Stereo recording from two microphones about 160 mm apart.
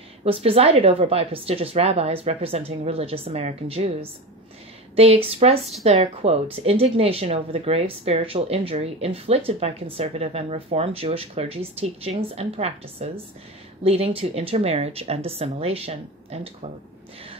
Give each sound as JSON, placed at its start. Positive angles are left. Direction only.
{"t": 0.2, "sound": "speech", "side_deg": -35}
{"t": 4.9, "sound": "speech", "side_deg": -40}
{"t": 5.6, "sound": "speech", "side_deg": 0}
{"t": 6.5, "sound": "speech", "side_deg": -40}